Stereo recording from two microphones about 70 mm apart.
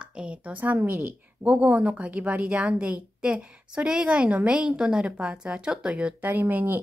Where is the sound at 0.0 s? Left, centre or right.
Centre.